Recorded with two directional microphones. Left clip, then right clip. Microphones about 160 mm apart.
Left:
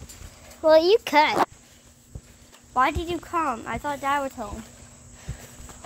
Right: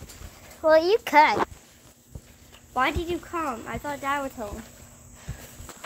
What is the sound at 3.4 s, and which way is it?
Speech, 40° left (ahead or behind).